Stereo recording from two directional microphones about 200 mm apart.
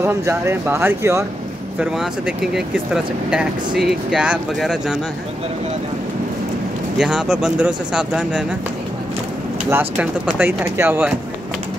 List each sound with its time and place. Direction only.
0.0 s speech: 15° right (ahead or behind)
7.0 s speech: 5° right (ahead or behind)
9.7 s speech: 10° right (ahead or behind)